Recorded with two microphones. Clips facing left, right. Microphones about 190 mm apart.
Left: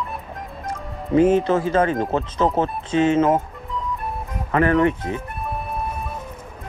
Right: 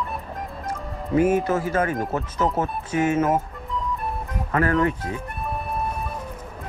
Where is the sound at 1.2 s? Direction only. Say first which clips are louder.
Left 4 dB; 25° left (ahead or behind).